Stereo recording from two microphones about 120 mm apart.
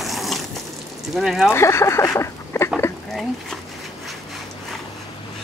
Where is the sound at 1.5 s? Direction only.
20° left (ahead or behind).